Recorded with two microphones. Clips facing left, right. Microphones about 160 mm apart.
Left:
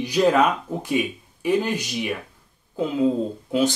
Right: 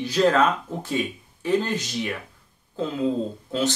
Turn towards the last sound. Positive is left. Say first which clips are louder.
# left 4 dB
turn(degrees=15)  # may be behind; listen again after turning